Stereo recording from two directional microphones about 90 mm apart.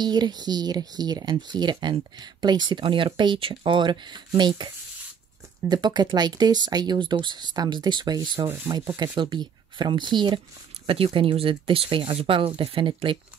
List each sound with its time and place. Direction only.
0.0 s speech: 50° right (ahead or behind)
5.7 s speech: 55° right (ahead or behind)
9.1 s speech: 75° right (ahead or behind)
9.4 s speech: 55° right (ahead or behind)
11.1 s speech: 70° right (ahead or behind)